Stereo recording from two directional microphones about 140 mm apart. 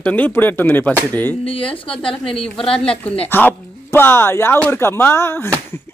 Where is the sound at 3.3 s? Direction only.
15° left (ahead or behind).